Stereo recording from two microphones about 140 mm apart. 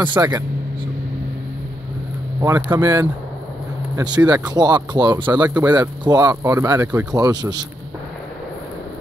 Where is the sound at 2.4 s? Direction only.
20° right (ahead or behind).